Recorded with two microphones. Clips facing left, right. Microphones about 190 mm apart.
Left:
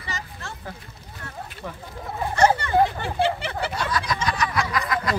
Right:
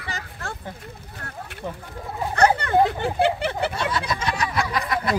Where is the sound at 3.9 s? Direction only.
25° right (ahead or behind).